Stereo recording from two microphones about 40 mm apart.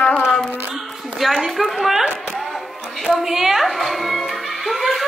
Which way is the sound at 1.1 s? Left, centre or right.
Centre.